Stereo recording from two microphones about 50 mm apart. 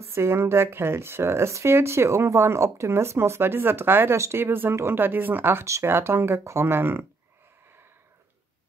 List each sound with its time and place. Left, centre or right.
0.1 s speech: right